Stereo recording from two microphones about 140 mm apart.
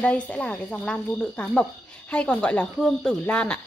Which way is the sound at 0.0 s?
10° left (ahead or behind).